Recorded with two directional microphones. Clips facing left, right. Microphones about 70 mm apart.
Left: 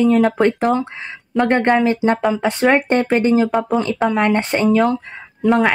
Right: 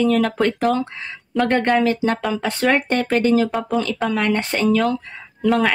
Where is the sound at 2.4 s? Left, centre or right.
Left.